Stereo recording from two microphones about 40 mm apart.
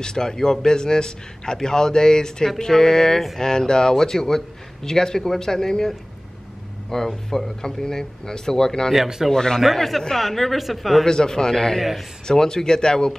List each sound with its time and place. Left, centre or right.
0.0 s speech: centre
7.1 s speech: centre
8.9 s speech: centre
9.3 s a woman's voice: centre
11.1 s speech: centre